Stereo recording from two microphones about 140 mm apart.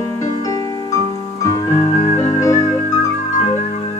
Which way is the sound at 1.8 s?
45° left (ahead or behind).